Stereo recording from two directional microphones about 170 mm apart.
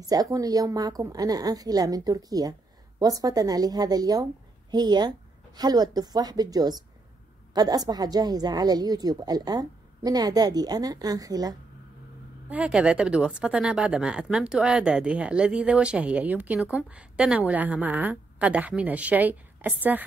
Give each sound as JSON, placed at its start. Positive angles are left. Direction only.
{"t": 0.0, "sound": "a woman's voice", "side_deg": -20}
{"t": 12.4, "sound": "speech", "side_deg": -5}